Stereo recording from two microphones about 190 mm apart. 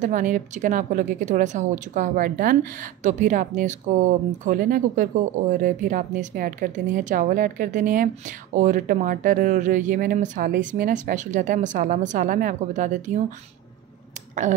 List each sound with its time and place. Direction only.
0.0 s a woman's voice: 45° right (ahead or behind)